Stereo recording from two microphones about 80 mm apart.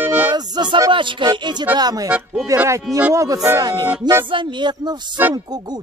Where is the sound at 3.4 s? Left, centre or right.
Right.